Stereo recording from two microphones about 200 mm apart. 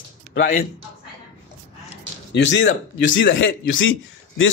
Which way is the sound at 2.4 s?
65° left (ahead or behind).